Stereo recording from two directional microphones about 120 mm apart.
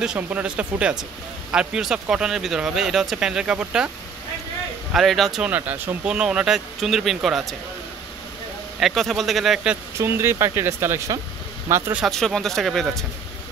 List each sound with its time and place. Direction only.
0.0 s speech: 10° right (ahead or behind)
4.9 s speech: centre (ahead or behind)
5.5 s speech: 15° right (ahead or behind)
8.7 s speech: centre (ahead or behind)
9.9 s speech: 20° right (ahead or behind)
12.1 s speech: 5° left (ahead or behind)